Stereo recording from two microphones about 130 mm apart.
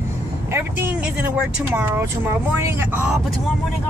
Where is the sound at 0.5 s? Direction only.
15° right (ahead or behind).